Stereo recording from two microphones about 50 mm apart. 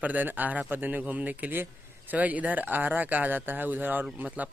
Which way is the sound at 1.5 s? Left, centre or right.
Right.